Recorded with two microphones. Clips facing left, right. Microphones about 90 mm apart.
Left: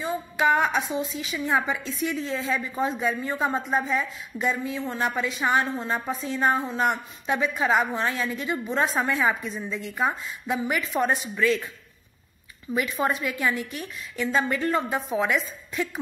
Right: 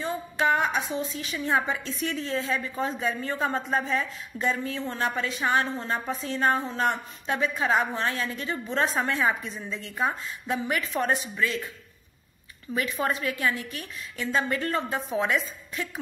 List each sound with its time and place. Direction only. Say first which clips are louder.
0.0 s a woman's voice: left 2 dB; 15° left (ahead or behind)
11.1 s speech: left 5 dB; 25° right (ahead or behind)
12.7 s a woman's voice: left 2 dB; 20° left (ahead or behind)